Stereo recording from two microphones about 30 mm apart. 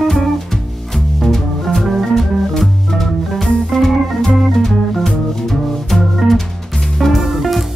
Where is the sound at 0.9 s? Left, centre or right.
Centre.